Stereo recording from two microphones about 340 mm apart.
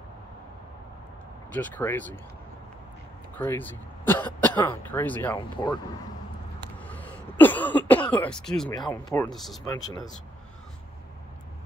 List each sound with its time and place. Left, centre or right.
1.5 s speech: centre
3.3 s speech: centre
6.9 s throat clearing: centre
8.8 s speech: centre